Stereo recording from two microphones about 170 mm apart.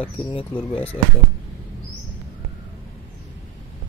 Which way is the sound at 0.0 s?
30° left (ahead or behind).